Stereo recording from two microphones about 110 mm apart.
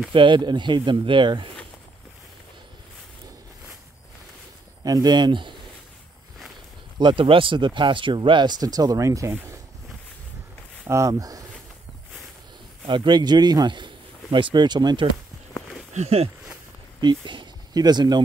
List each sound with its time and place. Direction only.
0.1 s speech: 50° right (ahead or behind)
4.8 s speech: 35° right (ahead or behind)
7.0 s speech: 50° right (ahead or behind); by 9.6 s 30° right (ahead or behind)
10.9 s speech: 30° right (ahead or behind)
12.8 s speech: 45° right (ahead or behind)
15.9 s a sound: 80° right
17.0 s speech: 45° right (ahead or behind)